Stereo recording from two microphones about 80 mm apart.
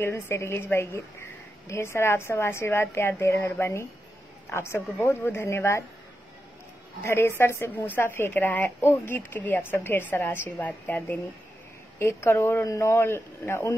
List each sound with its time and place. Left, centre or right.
0.0 s a woman's voice: left
7.0 s a woman's voice: left
12.0 s a woman's voice: left